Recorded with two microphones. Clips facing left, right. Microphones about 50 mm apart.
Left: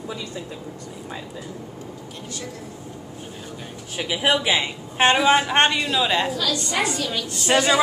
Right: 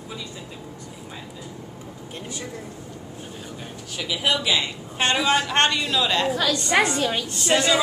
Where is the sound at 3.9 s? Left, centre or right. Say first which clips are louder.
Left 3 dB; left.